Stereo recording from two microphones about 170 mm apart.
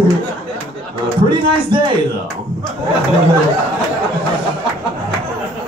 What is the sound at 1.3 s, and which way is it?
Speech, 30° right (ahead or behind).